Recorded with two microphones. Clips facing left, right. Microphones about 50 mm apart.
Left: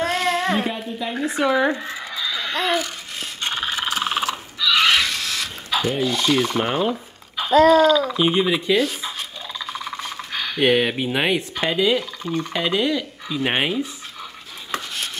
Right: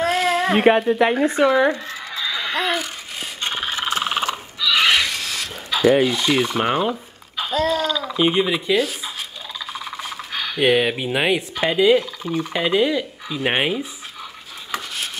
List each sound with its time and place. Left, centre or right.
0.0 s a sound: centre
0.6 s speech: right
1.4 s speech: centre
1.7 s speech: centre
2.1 s a sound: centre
3.6 s frog: centre
4.0 s a sound: centre
6.1 s speech: centre
14.7 s chopping: centre